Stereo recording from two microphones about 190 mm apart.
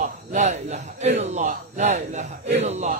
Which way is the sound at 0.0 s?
40° right (ahead or behind).